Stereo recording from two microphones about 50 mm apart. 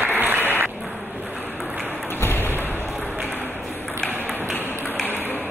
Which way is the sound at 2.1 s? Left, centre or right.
Left.